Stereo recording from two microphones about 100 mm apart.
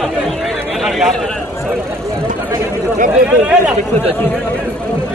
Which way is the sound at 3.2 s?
15° right (ahead or behind).